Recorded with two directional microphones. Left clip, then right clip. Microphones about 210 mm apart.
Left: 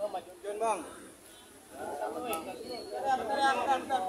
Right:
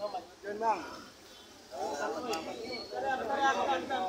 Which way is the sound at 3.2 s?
45° left (ahead or behind).